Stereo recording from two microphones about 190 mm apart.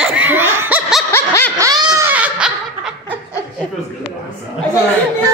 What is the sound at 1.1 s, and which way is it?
Snicker, 10° left (ahead or behind).